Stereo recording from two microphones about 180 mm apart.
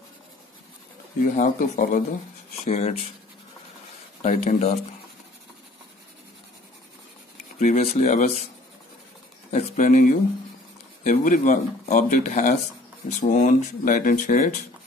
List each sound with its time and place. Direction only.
1.3 s speech: 45° left (ahead or behind)
2.6 s speech: 35° left (ahead or behind)
4.2 s speech: 40° left (ahead or behind)
7.5 s speech: 40° left (ahead or behind)
9.5 s speech: 40° left (ahead or behind)